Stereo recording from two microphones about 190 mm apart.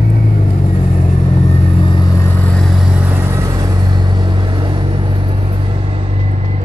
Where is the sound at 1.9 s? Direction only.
20° left (ahead or behind).